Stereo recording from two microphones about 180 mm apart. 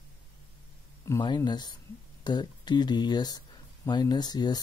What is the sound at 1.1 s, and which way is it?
Speech, 20° left (ahead or behind).